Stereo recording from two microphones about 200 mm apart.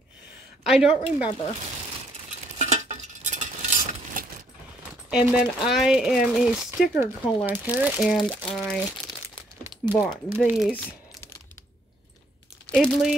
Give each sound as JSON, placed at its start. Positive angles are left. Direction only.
{"t": 0.7, "sound": "speech", "side_deg": -5}
{"t": 2.6, "sound": "a sound", "side_deg": -35}
{"t": 5.1, "sound": "speech", "side_deg": -5}
{"t": 8.1, "sound": "speech", "side_deg": 5}
{"t": 10.0, "sound": "speech", "side_deg": -5}
{"t": 12.6, "sound": "speech", "side_deg": 5}